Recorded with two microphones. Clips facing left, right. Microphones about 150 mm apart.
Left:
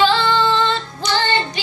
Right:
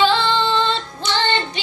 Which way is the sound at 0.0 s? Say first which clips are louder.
Left 1 dB; 25° right (ahead or behind).